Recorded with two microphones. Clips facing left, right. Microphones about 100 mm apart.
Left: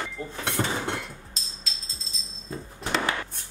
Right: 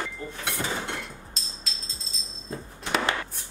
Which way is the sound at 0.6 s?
35° left (ahead or behind).